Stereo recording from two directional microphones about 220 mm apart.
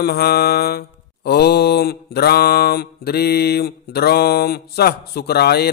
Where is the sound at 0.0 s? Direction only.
45° left (ahead or behind).